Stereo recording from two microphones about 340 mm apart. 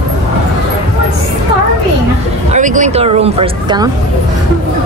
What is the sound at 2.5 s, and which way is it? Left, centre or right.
Speech, right.